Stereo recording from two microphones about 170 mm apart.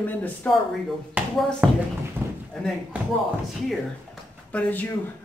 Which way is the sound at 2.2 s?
10° right (ahead or behind).